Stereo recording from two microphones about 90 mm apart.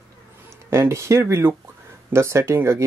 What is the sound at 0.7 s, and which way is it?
Speech, 35° right (ahead or behind).